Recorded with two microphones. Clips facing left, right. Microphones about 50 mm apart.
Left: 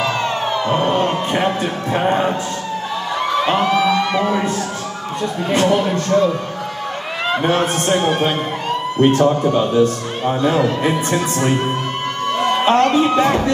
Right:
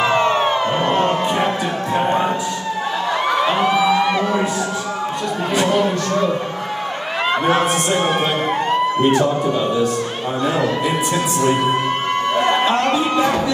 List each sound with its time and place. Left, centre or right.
0.0 s music: right
3.6 s a sound: centre
7.4 s a man's voice: right